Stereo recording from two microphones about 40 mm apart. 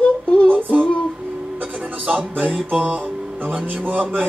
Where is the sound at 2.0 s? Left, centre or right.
Right.